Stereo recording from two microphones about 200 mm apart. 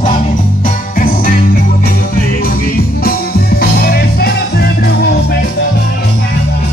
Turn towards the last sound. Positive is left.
turn(degrees=50)  # may be behind; listen again after turning